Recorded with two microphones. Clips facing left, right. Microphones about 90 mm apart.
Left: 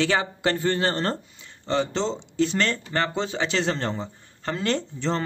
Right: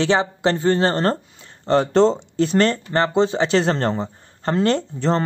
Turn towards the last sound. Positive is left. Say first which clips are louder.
# right 6 dB
turn(degrees=-45)  # may be behind; listen again after turning